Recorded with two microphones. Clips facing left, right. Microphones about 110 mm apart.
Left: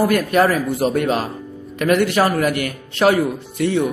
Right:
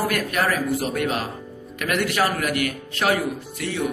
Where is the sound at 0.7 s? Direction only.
30° left (ahead or behind).